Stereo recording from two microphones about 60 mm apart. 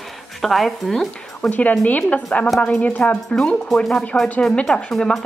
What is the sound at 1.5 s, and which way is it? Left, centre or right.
A woman's voice, left.